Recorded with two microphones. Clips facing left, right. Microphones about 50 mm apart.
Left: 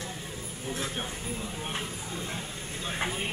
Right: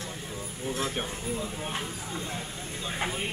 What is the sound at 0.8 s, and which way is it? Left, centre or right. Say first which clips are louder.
Speech: right 3 dB; centre.